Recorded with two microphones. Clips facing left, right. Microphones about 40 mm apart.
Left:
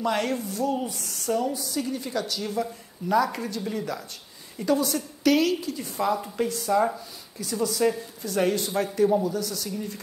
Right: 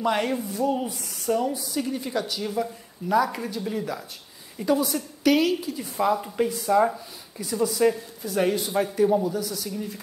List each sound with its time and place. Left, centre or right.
0.0 s speech: centre